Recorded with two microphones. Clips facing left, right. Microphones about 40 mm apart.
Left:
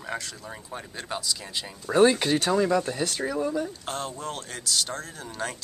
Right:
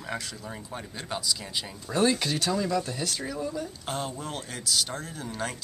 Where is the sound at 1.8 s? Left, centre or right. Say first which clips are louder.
Left 6 dB; centre.